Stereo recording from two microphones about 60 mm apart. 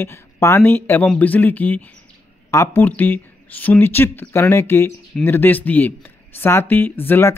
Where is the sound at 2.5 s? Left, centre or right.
Left.